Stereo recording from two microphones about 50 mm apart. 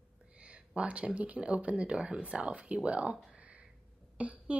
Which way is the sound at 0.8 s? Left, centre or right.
Right.